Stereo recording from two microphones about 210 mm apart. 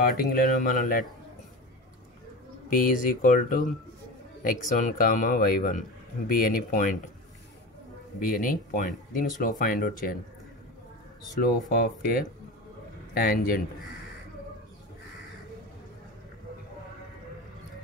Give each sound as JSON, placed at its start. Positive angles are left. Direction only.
{"t": 0.0, "sound": "speech", "side_deg": 40}
{"t": 2.7, "sound": "speech", "side_deg": 40}
{"t": 8.2, "sound": "speech", "side_deg": 40}
{"t": 11.7, "sound": "speech", "side_deg": 45}